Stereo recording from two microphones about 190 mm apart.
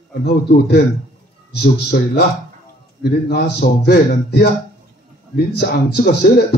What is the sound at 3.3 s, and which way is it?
Speech, 60° left (ahead or behind).